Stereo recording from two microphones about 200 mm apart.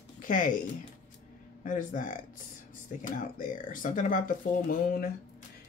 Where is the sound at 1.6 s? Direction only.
40° left (ahead or behind).